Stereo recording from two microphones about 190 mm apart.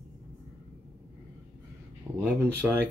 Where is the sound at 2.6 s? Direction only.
5° right (ahead or behind).